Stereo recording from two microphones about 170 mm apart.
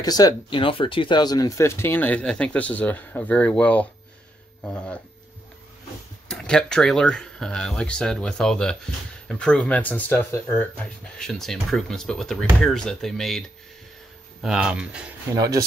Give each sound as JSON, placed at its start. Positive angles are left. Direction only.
{"t": 0.0, "sound": "speech", "side_deg": 20}
{"t": 6.2, "sound": "speech", "side_deg": 5}
{"t": 11.1, "sound": "speech", "side_deg": 5}
{"t": 14.4, "sound": "speech", "side_deg": -5}
{"t": 15.3, "sound": "speech", "side_deg": -20}